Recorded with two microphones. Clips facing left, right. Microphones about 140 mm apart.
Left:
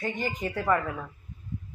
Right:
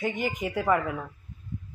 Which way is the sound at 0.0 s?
15° right (ahead or behind).